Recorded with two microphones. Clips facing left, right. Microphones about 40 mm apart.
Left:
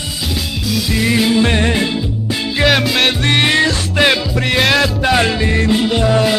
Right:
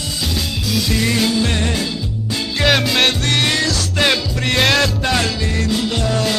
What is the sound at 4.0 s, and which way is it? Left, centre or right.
Music, centre.